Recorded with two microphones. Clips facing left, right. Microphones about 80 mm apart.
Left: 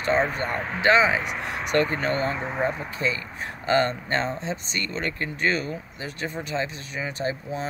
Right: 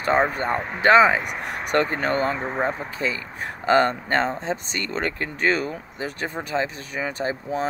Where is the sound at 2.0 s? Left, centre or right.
Right.